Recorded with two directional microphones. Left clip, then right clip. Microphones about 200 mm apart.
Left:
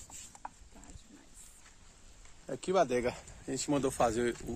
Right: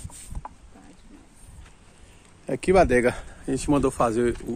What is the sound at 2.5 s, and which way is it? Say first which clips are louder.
Speech: right 11 dB; 25° right (ahead or behind).